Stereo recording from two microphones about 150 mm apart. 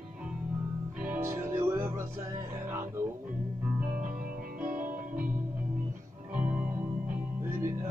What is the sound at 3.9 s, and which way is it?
Music, 70° right (ahead or behind).